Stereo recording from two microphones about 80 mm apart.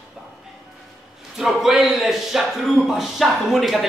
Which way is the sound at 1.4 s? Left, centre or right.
Centre.